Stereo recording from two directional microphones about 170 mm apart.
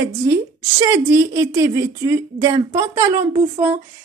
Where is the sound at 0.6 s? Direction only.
15° right (ahead or behind).